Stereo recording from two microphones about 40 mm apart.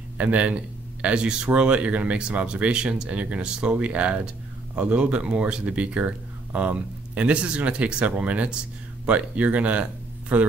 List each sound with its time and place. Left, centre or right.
0.2 s speech: right
1.0 s speech: right